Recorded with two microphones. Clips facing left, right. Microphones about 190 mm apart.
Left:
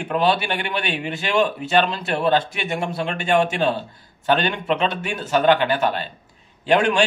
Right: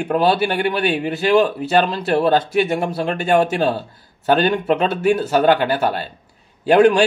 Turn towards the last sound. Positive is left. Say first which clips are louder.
# right 7 dB
turn(degrees=-35)  # may be behind; listen again after turning